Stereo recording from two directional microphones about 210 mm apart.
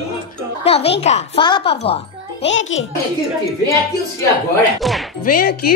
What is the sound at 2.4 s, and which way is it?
Speech, 65° left (ahead or behind).